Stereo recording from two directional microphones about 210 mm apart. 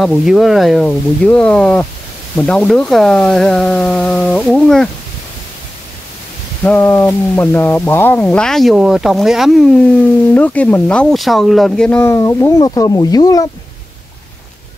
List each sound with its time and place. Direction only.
0.0 s speech: 5° right (ahead or behind)
6.6 s speech: 5° left (ahead or behind)